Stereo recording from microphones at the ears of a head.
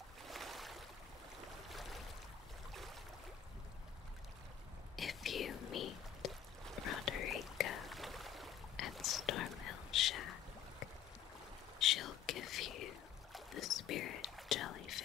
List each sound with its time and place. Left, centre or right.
4.9 s whispering: left
7.9 s a sound: centre
8.7 s whispering: left